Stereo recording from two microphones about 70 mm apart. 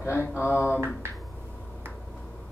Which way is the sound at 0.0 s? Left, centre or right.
Left.